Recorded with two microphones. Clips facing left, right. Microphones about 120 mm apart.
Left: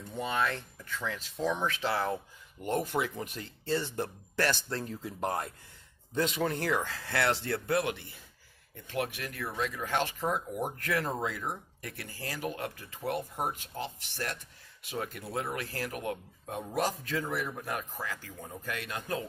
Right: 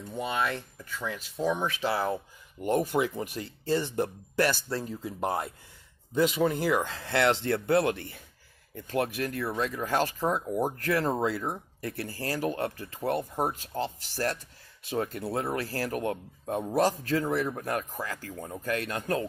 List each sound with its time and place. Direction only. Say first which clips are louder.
0.1 s speech: right 1 dB; 15° right (ahead or behind)
6.8 s speech: right 5 dB; 20° right (ahead or behind); by 19.2 s 45° right (ahead or behind)